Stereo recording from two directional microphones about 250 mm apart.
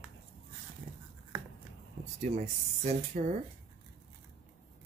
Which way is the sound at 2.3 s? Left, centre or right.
Right.